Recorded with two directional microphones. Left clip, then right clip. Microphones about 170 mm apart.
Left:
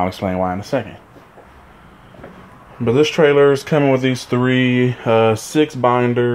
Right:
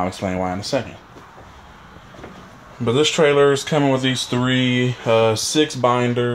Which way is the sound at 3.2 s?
20° left (ahead or behind).